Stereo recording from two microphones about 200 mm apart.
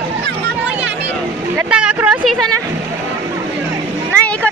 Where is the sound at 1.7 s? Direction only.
5° right (ahead or behind).